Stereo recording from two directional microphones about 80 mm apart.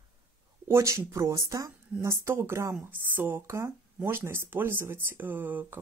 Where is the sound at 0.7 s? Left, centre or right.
Right.